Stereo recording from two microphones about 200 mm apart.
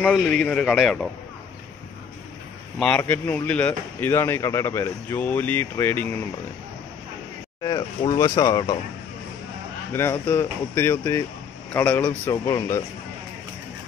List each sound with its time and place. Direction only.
0.0 s speech: 5° left (ahead or behind)
2.8 s speech: 5° left (ahead or behind)
7.6 s speech: 20° left (ahead or behind)
9.9 s speech: 10° left (ahead or behind)